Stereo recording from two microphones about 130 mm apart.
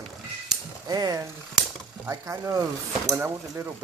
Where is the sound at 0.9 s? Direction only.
30° right (ahead or behind).